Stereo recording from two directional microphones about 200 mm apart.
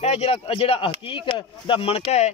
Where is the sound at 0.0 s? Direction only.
35° left (ahead or behind).